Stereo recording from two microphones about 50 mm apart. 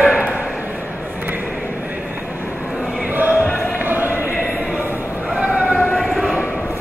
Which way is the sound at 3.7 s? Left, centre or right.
Right.